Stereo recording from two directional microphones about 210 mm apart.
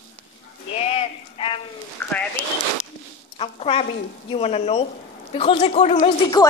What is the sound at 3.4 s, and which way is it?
A woman's voice, 30° left (ahead or behind).